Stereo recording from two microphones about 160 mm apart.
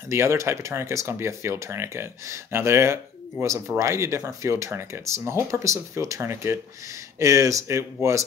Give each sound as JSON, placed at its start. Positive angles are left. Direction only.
{"t": 0.1, "sound": "speech", "side_deg": -15}